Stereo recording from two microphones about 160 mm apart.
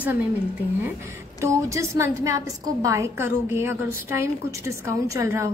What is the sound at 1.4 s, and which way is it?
A woman's voice, 20° right (ahead or behind).